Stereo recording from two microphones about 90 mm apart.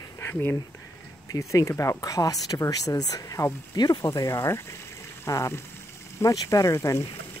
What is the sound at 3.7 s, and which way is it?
Speech, 50° left (ahead or behind).